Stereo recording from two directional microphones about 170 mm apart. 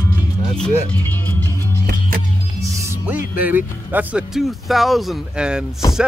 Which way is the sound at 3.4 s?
10° right (ahead or behind).